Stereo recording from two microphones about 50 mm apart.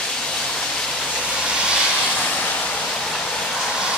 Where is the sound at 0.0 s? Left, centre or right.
Centre.